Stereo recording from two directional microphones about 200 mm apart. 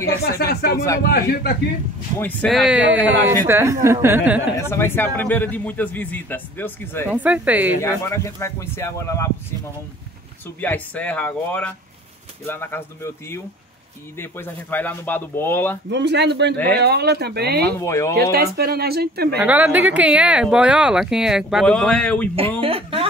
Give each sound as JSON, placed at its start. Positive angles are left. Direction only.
{"t": 0.2, "sound": "speech", "side_deg": 55}
{"t": 2.1, "sound": "a woman's voice", "side_deg": 5}
{"t": 4.6, "sound": "speech", "side_deg": 10}
{"t": 7.1, "sound": "a woman's voice", "side_deg": -5}
{"t": 7.8, "sound": "speech", "side_deg": 15}
{"t": 10.4, "sound": "speech", "side_deg": 10}
{"t": 15.9, "sound": "speech", "side_deg": -60}
{"t": 17.7, "sound": "speech", "side_deg": 15}
{"t": 18.3, "sound": "speech", "side_deg": -50}
{"t": 19.4, "sound": "speech", "side_deg": -10}
{"t": 22.6, "sound": "speech", "side_deg": -30}